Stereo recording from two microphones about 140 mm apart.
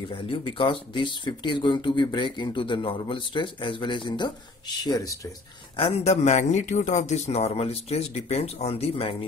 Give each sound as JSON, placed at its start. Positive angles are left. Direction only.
{"t": 0.1, "sound": "speech", "side_deg": 40}
{"t": 5.8, "sound": "speech", "side_deg": 45}